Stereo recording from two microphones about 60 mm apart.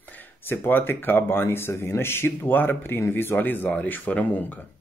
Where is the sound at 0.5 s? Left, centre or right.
Left.